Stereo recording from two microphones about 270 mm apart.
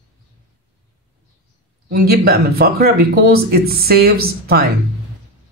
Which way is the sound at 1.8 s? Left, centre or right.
Right.